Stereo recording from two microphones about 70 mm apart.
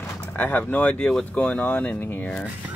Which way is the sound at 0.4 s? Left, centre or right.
Left.